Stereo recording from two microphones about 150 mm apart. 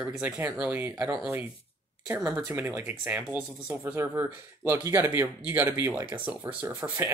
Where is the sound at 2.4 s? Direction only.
10° right (ahead or behind).